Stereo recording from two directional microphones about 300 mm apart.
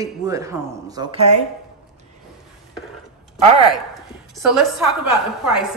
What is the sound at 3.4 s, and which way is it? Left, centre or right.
Speech, centre.